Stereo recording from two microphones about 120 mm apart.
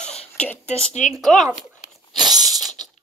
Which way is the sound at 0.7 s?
80° left.